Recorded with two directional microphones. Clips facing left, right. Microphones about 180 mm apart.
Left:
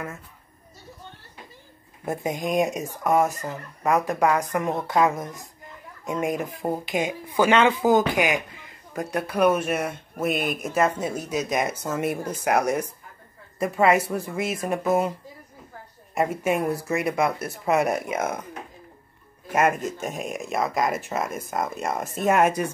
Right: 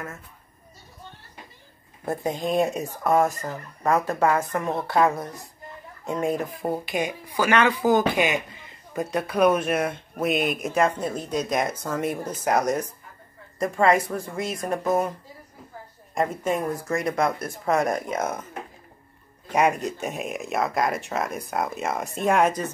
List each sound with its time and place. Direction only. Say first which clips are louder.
2.0 s speech: right 1 dB; 15° left (ahead or behind)
16.2 s speech: left 1 dB; 10° left (ahead or behind)
19.5 s speech: even; 5° left (ahead or behind)